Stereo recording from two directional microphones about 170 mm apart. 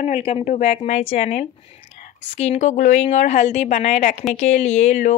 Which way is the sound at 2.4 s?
40° left (ahead or behind).